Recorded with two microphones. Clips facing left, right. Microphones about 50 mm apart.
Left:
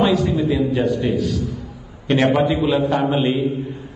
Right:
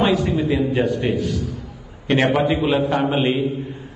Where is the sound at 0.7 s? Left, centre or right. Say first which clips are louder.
Left 1 dB; right.